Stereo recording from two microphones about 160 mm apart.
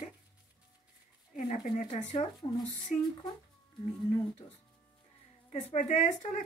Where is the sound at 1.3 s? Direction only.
45° left (ahead or behind).